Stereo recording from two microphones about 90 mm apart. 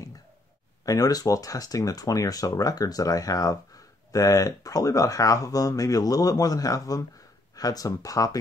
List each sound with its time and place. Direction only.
0.8 s speech: 45° left (ahead or behind)